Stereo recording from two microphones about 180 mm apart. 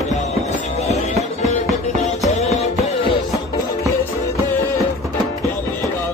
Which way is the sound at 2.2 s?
40° left (ahead or behind).